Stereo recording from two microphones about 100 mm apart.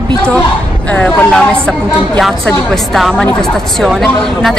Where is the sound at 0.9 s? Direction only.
5° left (ahead or behind).